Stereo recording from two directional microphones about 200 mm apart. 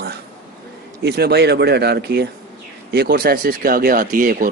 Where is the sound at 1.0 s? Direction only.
55° right (ahead or behind).